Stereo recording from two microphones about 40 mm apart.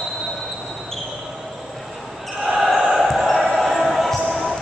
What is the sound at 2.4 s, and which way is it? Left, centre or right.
Basketball bounce, centre.